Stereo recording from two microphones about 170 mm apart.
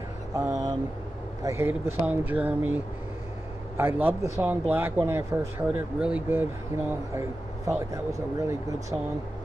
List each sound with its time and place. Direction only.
0.4 s vehicle: 20° right (ahead or behind)
1.4 s speech: 15° right (ahead or behind)
7.2 s speech: 20° right (ahead or behind)